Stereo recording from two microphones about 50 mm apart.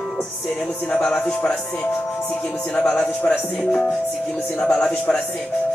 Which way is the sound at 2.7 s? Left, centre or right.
Left.